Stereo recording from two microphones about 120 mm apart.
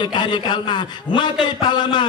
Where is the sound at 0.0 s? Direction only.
40° left (ahead or behind).